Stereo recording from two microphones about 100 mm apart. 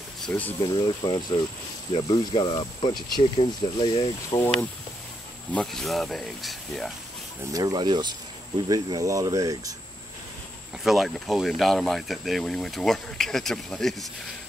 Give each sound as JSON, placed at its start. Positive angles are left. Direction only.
{"t": 0.3, "sound": "speech", "side_deg": 20}
{"t": 0.6, "sound": "speech", "side_deg": 45}
{"t": 4.3, "sound": "speech", "side_deg": 30}
{"t": 5.5, "sound": "speech", "side_deg": 5}
{"t": 7.5, "sound": "speech", "side_deg": -45}
{"t": 10.8, "sound": "speech", "side_deg": 0}